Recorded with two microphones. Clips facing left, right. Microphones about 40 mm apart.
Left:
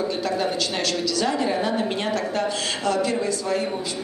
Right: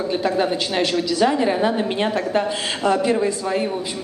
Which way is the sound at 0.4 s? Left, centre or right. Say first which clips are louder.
Right 4 dB; right.